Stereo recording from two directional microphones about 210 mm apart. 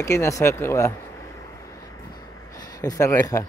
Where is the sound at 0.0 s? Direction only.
15° left (ahead or behind).